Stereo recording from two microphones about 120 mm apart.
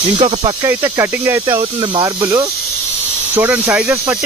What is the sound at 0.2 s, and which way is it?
Speech, 55° right (ahead or behind).